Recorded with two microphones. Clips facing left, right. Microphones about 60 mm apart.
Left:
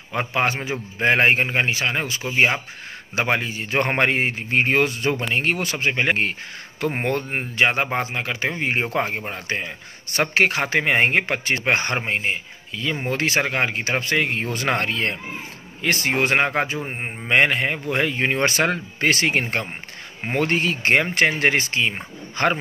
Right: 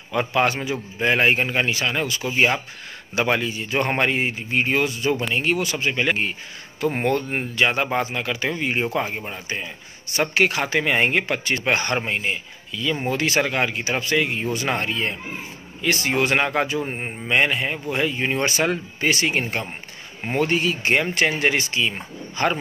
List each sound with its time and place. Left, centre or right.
0.1 s speech: left
15.8 s speech: left
16.8 s speech: left
17.3 s speech: left